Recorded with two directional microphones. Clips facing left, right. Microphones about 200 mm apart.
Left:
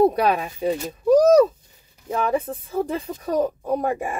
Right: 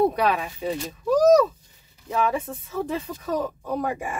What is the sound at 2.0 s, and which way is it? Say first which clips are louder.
Speech: left 2 dB; 35° left (ahead or behind).